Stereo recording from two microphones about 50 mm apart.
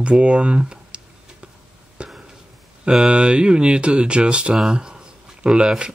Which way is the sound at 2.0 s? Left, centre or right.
Centre.